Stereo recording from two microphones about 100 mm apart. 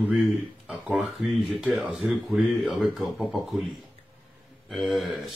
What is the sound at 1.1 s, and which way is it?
Speech, centre (ahead or behind).